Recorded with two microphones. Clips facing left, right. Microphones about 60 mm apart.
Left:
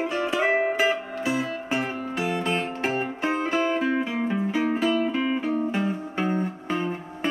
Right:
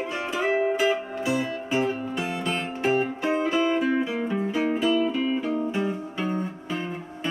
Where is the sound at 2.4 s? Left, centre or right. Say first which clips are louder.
Even; left.